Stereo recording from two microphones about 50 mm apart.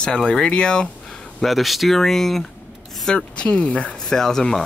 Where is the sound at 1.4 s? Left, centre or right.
Centre.